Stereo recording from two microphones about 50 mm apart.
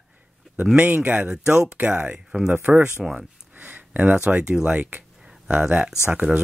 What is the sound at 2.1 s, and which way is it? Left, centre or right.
Speech, centre.